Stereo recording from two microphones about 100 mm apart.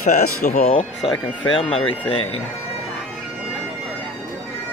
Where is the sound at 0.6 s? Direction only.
70° left (ahead or behind).